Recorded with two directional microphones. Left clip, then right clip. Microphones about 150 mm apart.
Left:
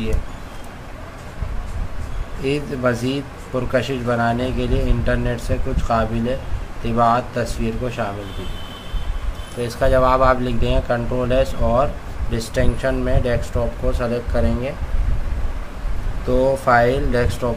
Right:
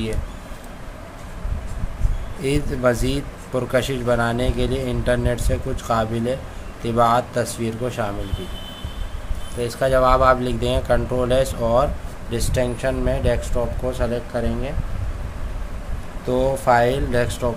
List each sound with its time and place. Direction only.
2.4 s speech: 25° right (ahead or behind)
9.6 s speech: 20° right (ahead or behind)
16.3 s speech: 15° right (ahead or behind)